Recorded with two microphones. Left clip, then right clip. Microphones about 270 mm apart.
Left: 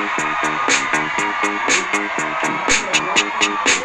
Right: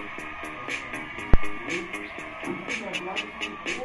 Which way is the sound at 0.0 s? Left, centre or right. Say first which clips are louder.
Left 17 dB; left.